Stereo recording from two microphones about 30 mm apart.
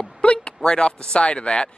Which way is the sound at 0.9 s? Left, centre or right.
Left.